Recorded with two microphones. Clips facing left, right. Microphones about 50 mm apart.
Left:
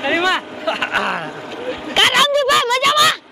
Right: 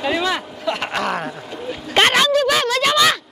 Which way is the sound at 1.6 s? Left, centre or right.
Left.